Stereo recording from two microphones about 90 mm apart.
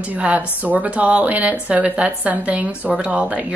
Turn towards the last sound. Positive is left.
turn(degrees=-15)  # may be behind; listen again after turning